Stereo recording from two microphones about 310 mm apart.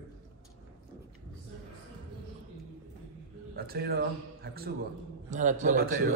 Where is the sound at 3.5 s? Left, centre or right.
Right.